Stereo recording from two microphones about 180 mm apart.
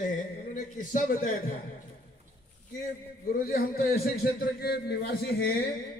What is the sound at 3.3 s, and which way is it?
A man's voice, 55° left (ahead or behind).